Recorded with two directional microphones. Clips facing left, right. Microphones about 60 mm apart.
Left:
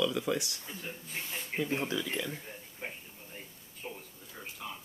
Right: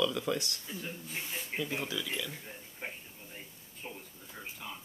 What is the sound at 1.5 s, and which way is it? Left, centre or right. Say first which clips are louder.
Speech: left 4 dB; left.